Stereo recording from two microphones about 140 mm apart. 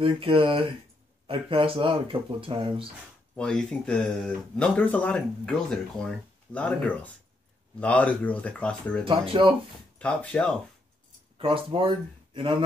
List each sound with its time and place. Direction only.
0.0 s speech: 35° right (ahead or behind)
3.3 s speech: 5° left (ahead or behind)
9.0 s speech: 40° right (ahead or behind)
9.9 s speech: 10° left (ahead or behind)
11.3 s speech: 40° right (ahead or behind)